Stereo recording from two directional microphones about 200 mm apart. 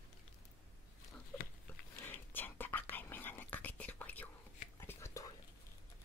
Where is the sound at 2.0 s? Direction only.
10° left (ahead or behind).